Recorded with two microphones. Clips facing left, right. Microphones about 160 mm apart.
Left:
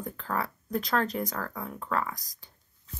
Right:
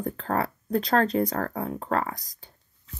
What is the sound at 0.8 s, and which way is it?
Speech, 30° right (ahead or behind).